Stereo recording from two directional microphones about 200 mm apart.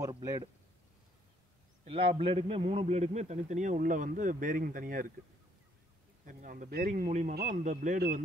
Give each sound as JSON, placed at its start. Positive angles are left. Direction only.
{"t": 0.0, "sound": "speech", "side_deg": -15}
{"t": 1.9, "sound": "a man's voice", "side_deg": -25}
{"t": 6.2, "sound": "a man's voice", "side_deg": -40}